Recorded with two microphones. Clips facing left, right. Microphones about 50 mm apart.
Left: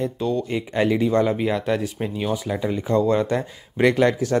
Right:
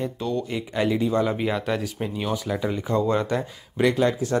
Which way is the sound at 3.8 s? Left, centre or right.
Left.